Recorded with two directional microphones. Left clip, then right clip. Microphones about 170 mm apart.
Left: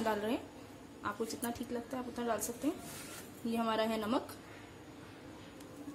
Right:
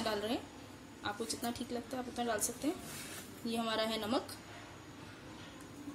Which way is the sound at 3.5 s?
25° left (ahead or behind).